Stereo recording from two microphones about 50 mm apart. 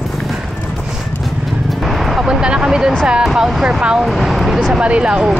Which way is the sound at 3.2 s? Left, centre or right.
Centre.